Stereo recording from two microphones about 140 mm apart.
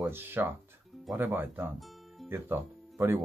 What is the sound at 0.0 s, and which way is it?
Speech, 15° right (ahead or behind).